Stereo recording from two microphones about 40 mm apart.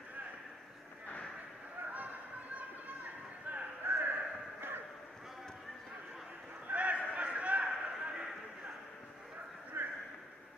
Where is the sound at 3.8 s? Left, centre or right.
Right.